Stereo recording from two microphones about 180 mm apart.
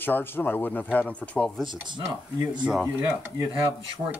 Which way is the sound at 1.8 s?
25° right (ahead or behind).